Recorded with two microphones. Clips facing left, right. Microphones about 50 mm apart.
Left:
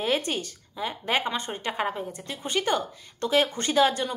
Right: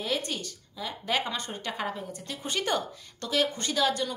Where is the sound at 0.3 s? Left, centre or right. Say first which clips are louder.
Left 5 dB; left; by 2.8 s centre.